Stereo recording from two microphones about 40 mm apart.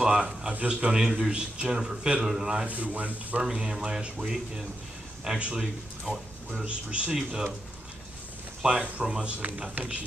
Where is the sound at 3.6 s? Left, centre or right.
Centre.